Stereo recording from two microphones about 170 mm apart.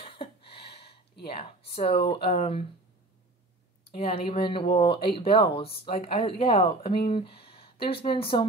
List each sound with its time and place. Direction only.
0.0 s a sound: 30° left (ahead or behind)
1.2 s speech: 35° left (ahead or behind)
3.8 s speech: 35° left (ahead or behind)